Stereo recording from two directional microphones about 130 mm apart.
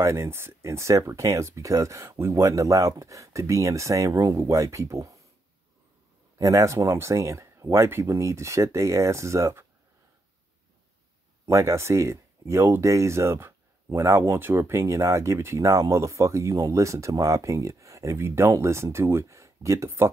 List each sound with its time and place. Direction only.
0.0 s speech: 20° right (ahead or behind)
6.3 s speech: 25° right (ahead or behind)
11.4 s speech: 20° right (ahead or behind)